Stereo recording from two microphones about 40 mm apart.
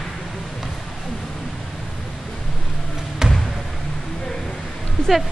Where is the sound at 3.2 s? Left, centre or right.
Centre.